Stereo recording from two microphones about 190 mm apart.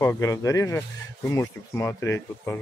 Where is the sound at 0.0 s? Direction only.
15° left (ahead or behind).